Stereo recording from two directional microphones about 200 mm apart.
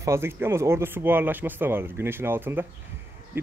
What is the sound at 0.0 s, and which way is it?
Speech, 15° right (ahead or behind).